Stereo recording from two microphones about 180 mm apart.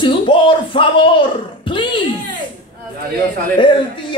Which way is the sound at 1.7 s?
30° left (ahead or behind).